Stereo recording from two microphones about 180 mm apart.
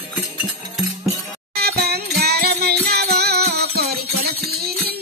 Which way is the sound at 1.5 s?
60° right (ahead or behind).